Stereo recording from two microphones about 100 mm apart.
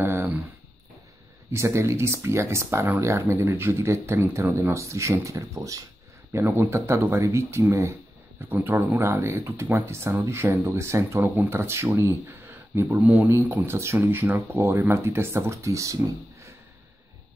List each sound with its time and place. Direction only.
0.0 s a sound: 20° right (ahead or behind)
1.5 s speech: 25° right (ahead or behind)
6.3 s speech: 25° right (ahead or behind)